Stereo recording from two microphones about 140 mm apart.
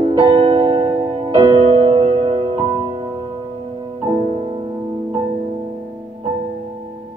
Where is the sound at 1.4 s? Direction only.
35° right (ahead or behind).